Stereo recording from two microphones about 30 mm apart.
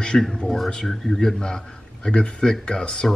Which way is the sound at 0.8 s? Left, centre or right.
Centre.